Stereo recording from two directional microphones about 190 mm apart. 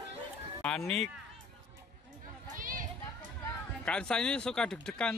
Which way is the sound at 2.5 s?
45° right (ahead or behind).